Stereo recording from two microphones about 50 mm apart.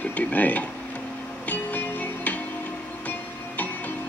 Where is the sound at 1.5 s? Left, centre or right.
Left.